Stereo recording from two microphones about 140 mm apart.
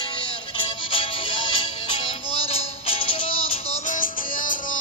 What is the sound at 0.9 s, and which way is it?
Music, 40° left (ahead or behind).